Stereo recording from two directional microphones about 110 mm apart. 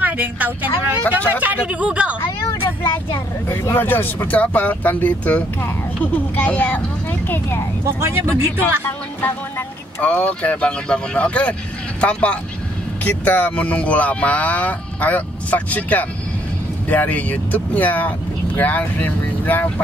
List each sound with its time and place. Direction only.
0.0 s speech: 15° right (ahead or behind)
2.2 s vehicle: 25° left (ahead or behind)
3.1 s speech: 25° left (ahead or behind)
7.8 s speech: 25° right (ahead or behind)
9.2 s speech: 15° left (ahead or behind)